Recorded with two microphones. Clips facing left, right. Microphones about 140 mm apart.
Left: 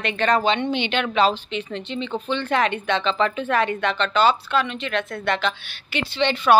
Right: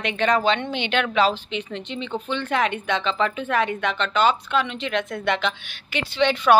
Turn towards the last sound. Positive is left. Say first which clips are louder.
# right 1 dB
turn(degrees=-10)  # may be behind; listen again after turning